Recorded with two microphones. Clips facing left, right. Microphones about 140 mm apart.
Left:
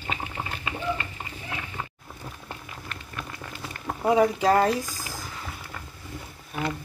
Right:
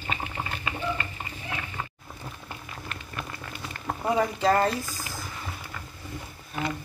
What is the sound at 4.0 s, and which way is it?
Speech, 10° left (ahead or behind).